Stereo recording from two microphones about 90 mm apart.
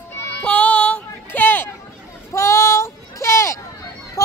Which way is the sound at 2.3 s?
35° left (ahead or behind).